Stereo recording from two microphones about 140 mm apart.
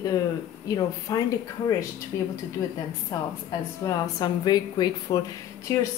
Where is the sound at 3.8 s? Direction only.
25° left (ahead or behind).